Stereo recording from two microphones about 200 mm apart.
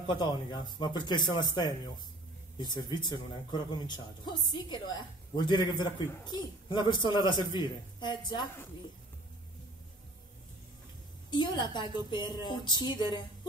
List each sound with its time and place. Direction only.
0.0 s speech: 20° left (ahead or behind)
11.2 s speech: 20° left (ahead or behind)